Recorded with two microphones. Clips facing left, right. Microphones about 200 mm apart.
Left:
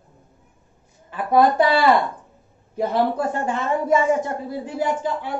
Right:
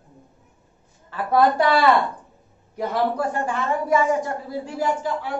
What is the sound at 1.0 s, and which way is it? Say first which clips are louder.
A woman's voice: left 2 dB; 15° left (ahead or behind).